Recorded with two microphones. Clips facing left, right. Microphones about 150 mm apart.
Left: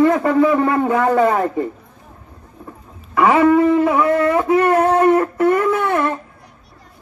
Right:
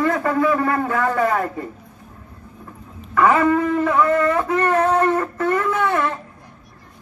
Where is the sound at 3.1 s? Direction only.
15° left (ahead or behind).